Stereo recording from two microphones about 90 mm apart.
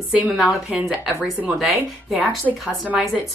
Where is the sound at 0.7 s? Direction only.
15° right (ahead or behind).